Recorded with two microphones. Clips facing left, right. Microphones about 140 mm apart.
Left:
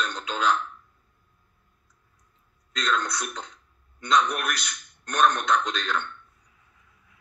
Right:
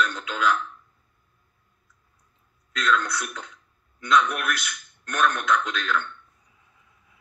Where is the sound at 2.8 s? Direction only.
30° left (ahead or behind).